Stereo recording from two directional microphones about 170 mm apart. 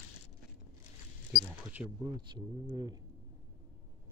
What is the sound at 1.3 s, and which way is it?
Camera, 10° right (ahead or behind).